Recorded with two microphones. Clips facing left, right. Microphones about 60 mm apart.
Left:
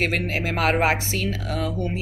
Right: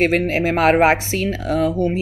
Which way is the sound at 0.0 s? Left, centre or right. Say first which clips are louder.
Right 7 dB; right.